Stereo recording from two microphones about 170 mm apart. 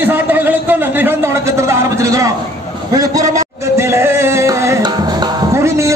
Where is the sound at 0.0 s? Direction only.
10° right (ahead or behind).